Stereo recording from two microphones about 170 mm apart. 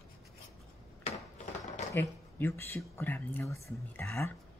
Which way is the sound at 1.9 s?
15° left (ahead or behind).